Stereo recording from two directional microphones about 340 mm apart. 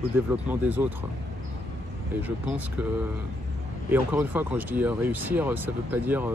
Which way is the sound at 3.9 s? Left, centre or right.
Centre.